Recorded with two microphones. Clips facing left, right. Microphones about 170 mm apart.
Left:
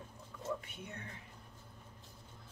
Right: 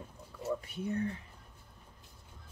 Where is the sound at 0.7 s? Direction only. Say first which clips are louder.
Right 14 dB; 35° right (ahead or behind).